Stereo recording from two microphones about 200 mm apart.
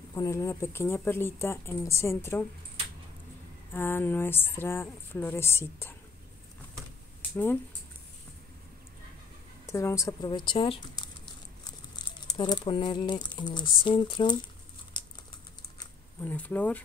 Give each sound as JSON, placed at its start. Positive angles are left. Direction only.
{"t": 0.1, "sound": "a woman's voice", "side_deg": 15}
{"t": 3.7, "sound": "a woman's voice", "side_deg": 10}
{"t": 9.7, "sound": "speech", "side_deg": 15}
{"t": 16.2, "sound": "a woman's voice", "side_deg": 10}